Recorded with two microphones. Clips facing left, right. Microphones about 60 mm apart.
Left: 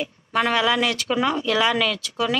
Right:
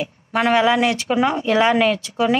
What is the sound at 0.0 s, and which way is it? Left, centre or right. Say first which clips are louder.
Speech: right 3 dB; centre.